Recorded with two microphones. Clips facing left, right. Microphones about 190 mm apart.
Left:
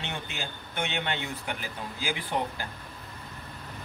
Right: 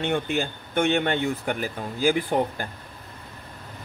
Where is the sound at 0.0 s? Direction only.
55° right (ahead or behind).